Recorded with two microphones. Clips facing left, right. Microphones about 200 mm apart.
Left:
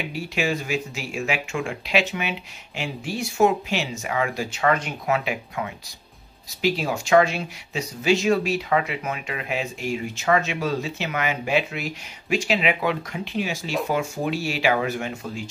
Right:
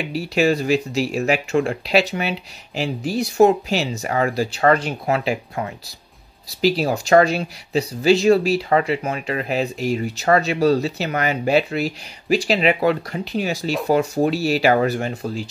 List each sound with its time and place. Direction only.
0.1 s speech: 35° right (ahead or behind)